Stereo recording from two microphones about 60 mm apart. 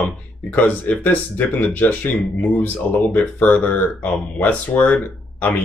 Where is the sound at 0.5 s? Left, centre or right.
Left.